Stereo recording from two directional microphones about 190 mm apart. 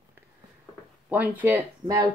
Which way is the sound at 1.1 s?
10° right (ahead or behind).